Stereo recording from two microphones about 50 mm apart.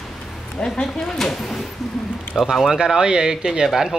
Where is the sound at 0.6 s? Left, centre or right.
Centre.